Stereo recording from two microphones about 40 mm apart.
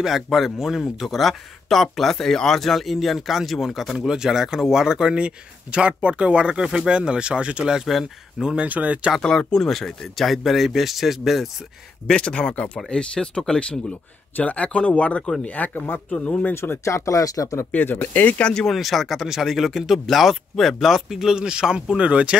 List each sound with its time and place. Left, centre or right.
0.0 s speech: centre; by 7.7 s right
7.9 s speech: centre
8.4 s speech: centre
8.6 s speech: right
9.5 s speech: centre
12.1 s speech: left
12.8 s speech: left
15.4 s speech: left
16.1 s speech: left
16.5 s speech: left
17.4 s speech: left
18.4 s speech: left
18.7 s speech: centre; by 22.4 s right